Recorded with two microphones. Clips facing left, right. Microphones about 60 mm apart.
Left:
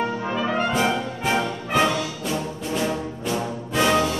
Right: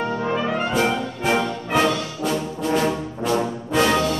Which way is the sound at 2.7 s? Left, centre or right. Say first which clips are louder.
Right 4 dB; right.